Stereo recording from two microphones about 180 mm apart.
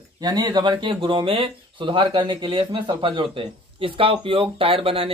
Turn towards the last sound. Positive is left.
turn(degrees=-30)  # may be behind; listen again after turning